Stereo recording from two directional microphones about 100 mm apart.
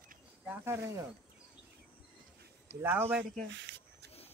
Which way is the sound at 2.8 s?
20° right (ahead or behind).